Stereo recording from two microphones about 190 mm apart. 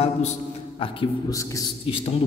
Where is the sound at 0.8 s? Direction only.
25° left (ahead or behind).